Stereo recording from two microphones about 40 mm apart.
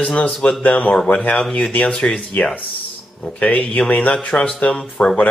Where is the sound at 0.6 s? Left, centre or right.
Left.